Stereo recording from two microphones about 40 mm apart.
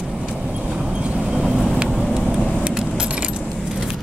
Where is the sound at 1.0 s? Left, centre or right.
Right.